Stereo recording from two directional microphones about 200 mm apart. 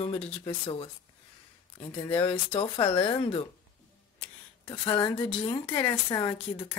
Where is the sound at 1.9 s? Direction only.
25° left (ahead or behind).